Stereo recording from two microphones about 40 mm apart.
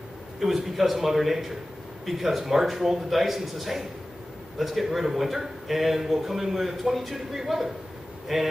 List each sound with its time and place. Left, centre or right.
0.4 s a man's voice: centre